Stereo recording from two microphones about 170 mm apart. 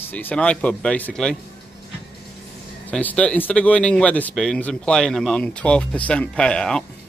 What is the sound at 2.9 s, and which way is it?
Speech, 10° left (ahead or behind).